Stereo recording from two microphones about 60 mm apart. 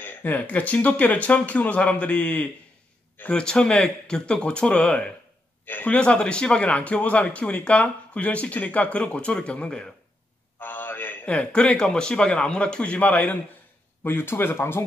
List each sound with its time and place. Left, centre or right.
0.0 s a man's voice: left
5.7 s speech: left
5.9 s a man's voice: centre
10.6 s a sound: left
11.2 s a man's voice: centre
14.0 s speech: left